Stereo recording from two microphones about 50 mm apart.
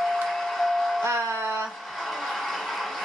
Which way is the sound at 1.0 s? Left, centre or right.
Right.